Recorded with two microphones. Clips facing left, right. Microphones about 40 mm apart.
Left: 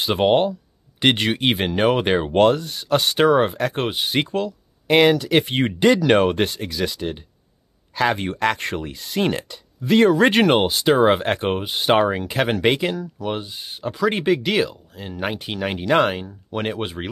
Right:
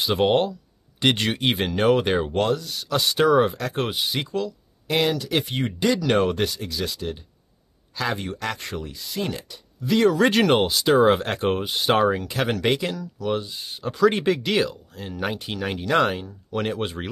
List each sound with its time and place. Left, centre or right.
0.0 s speech: left
2.3 s speech: left
10.1 s speech: left
12.1 s speech: left
13.2 s speech: left
13.8 s speech: centre
15.9 s speech: left
16.2 s speech: centre
16.8 s speech: centre